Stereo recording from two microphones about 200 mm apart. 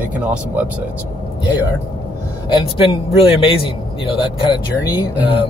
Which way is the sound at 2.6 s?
25° left (ahead or behind).